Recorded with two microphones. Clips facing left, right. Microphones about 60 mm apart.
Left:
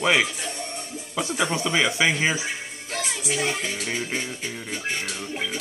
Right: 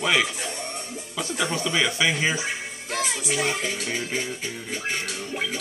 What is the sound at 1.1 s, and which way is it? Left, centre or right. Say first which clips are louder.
Speech: left 2 dB; centre.